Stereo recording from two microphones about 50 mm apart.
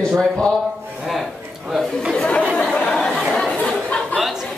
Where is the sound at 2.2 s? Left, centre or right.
Centre.